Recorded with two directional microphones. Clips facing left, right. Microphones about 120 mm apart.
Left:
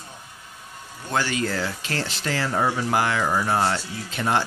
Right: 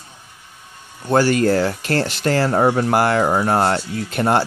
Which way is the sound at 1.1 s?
45° right (ahead or behind).